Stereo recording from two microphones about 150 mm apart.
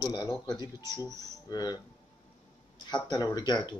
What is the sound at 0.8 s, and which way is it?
Speech, 20° right (ahead or behind).